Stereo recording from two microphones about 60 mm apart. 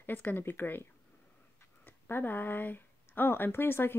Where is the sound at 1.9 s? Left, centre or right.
Left.